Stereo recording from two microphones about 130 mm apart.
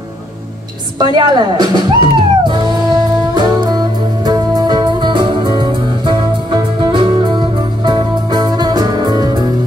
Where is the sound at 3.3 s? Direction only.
35° right (ahead or behind).